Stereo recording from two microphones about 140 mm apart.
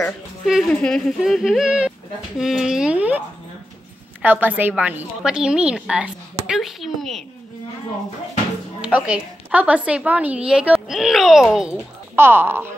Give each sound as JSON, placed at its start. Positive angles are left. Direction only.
{"t": 0.5, "sound": "speech", "side_deg": 0}
{"t": 4.2, "sound": "a woman's voice", "side_deg": -10}
{"t": 8.8, "sound": "a woman's voice", "side_deg": -10}
{"t": 12.2, "sound": "a woman's voice", "side_deg": -15}